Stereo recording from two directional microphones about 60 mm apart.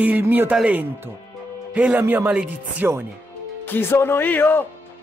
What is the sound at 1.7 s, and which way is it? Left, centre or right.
Speech, centre.